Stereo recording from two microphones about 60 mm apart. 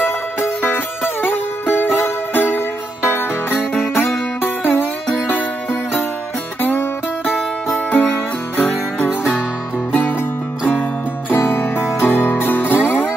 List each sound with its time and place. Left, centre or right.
0.6 s music: left
10.7 s music: left